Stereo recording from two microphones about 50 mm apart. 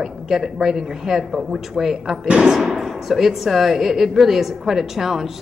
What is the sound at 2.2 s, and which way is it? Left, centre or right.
Speech, right.